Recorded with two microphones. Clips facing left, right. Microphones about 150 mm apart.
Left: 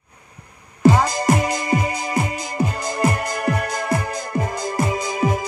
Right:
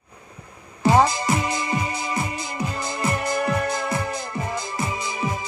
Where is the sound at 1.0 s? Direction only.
40° left (ahead or behind).